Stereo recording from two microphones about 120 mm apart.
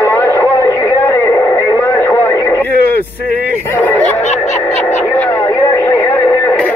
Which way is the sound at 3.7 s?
15° left (ahead or behind).